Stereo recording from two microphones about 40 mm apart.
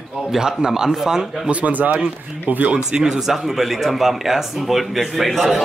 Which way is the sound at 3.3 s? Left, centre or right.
Centre.